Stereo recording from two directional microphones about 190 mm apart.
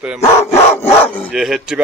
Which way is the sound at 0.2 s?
15° left (ahead or behind).